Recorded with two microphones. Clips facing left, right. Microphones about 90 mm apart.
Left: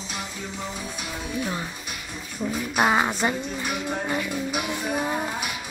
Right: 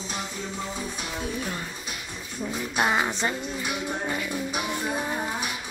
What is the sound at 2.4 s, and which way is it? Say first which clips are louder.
Speech: left 3 dB; 15° left (ahead or behind).